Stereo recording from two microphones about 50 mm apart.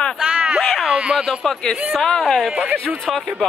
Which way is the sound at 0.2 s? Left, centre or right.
Centre.